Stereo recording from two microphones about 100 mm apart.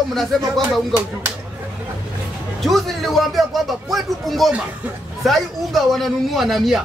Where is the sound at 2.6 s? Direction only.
Centre (ahead or behind).